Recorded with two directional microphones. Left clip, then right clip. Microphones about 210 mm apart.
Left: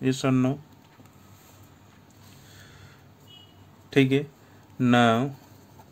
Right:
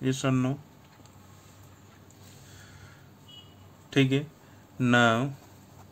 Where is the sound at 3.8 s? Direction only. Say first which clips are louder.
Left 4 dB; 15° left (ahead or behind).